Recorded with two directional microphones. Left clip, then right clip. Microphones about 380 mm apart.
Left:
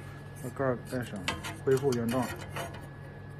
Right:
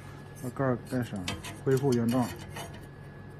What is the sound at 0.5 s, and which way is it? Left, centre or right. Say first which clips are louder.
Speech: right 1 dB; centre.